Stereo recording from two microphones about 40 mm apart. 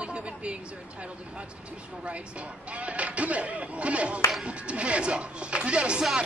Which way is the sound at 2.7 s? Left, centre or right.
Right.